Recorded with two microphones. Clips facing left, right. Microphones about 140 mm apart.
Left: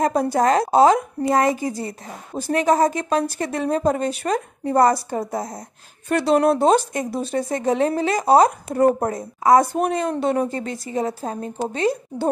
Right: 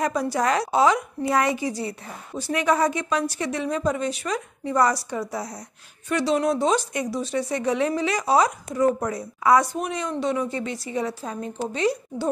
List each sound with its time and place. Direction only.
0.0 s a woman's voice: 50° left (ahead or behind)